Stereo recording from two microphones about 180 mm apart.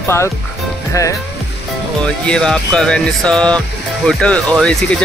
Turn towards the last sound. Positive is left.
turn(degrees=5)  # may be behind; listen again after turning